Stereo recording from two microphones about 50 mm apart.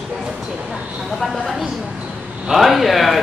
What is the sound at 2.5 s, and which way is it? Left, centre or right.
Speech, centre.